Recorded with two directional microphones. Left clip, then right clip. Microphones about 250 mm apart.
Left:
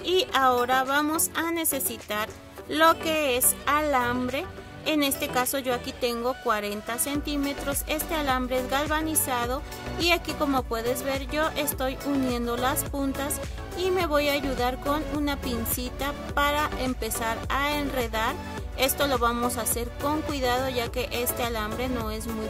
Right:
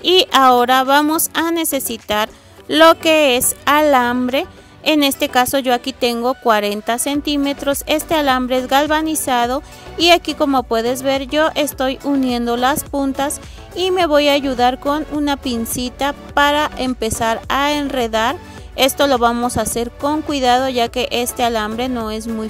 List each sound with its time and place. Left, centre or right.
0.0 s speech: right